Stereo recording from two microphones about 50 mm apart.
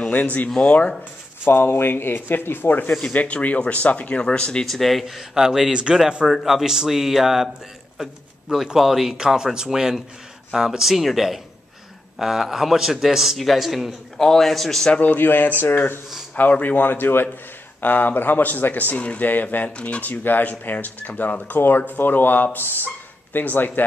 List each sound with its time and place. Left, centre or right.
0.0 s speech: left
1.4 s speech: left
3.1 s speech: left
4.2 s a man's voice: centre
4.6 s a man's voice: centre
5.0 s speech: centre
6.2 s a man's voice: centre
14.1 s a man's voice: centre
14.9 s speech: left
16.6 s speech: left
17.7 s speech: left
21.5 s speech: left